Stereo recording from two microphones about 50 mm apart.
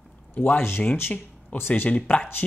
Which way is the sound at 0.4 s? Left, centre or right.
Left.